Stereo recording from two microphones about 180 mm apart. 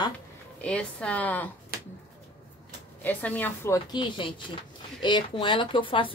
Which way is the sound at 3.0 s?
10° left (ahead or behind).